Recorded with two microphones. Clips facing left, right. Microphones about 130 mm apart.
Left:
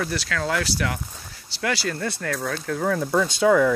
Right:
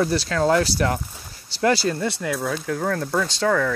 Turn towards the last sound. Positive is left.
turn(degrees=10)  # may be behind; listen again after turning